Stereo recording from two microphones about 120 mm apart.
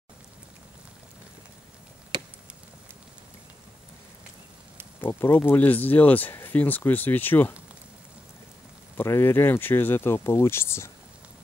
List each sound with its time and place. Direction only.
2.1 s a sound: 40° right (ahead or behind)
5.0 s speech: 20° left (ahead or behind)
8.9 s speech: 20° left (ahead or behind)